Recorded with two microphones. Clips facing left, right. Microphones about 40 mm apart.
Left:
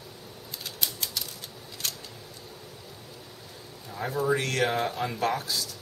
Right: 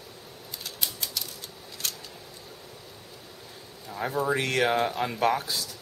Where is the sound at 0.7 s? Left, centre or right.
Centre.